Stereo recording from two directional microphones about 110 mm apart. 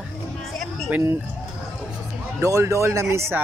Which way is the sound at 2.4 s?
30° right (ahead or behind).